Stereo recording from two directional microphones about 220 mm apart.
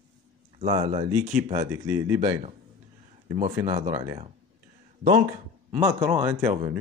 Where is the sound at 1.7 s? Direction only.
15° right (ahead or behind).